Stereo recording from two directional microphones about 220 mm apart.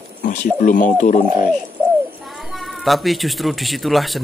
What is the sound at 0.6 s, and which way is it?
Speech, 35° left (ahead or behind).